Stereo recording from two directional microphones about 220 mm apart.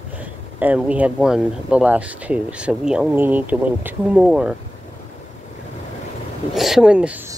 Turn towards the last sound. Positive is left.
turn(degrees=-5)  # may be behind; listen again after turning